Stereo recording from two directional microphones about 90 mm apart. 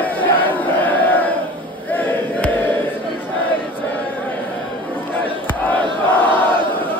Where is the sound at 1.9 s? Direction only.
20° left (ahead or behind).